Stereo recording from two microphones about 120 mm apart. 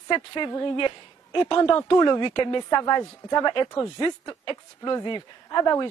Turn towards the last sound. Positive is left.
turn(degrees=30)  # may be behind; listen again after turning